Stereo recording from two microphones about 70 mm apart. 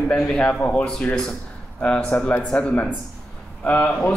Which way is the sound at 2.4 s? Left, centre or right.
Centre.